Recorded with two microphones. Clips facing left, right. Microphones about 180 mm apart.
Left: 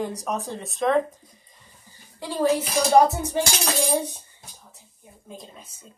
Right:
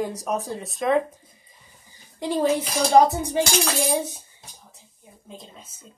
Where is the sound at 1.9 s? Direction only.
20° right (ahead or behind).